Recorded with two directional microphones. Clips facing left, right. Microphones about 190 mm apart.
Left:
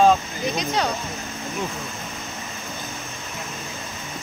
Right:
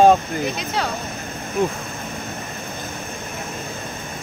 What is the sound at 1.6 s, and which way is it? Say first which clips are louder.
Speech: right 9 dB; 55° right (ahead or behind).